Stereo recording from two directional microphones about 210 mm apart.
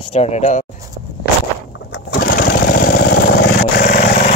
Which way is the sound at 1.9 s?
50° left (ahead or behind).